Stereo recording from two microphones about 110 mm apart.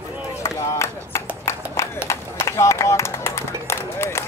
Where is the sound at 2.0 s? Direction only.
25° left (ahead or behind).